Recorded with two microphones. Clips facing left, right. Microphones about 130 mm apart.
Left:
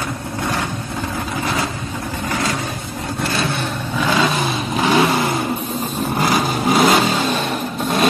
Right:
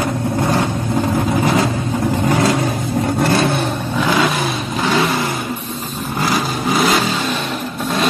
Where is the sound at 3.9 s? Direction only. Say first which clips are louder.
Right 1 dB; 15° right (ahead or behind).